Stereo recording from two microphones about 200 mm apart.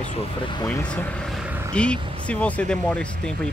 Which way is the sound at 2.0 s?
25° right (ahead or behind).